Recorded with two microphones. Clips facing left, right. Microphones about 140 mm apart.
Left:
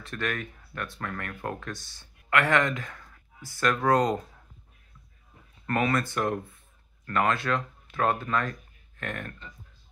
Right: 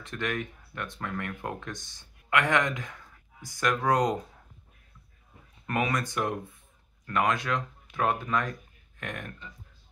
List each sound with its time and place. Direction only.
0.0 s speech: 20° right (ahead or behind)
5.7 s speech: 15° right (ahead or behind)